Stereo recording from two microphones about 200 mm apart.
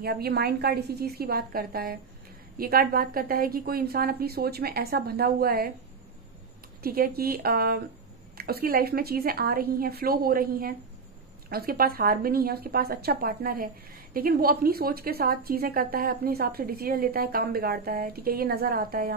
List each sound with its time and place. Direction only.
0.0 s a woman's voice: 50° right (ahead or behind)
6.8 s a woman's voice: 50° right (ahead or behind)